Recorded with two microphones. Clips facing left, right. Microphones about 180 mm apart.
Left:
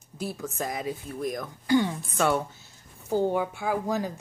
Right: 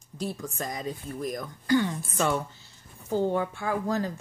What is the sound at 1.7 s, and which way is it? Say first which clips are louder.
Speech: left 1 dB; 15° left (ahead or behind).